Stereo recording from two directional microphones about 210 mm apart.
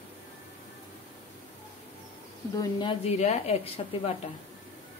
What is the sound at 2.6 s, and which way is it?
A woman's voice, 20° left (ahead or behind).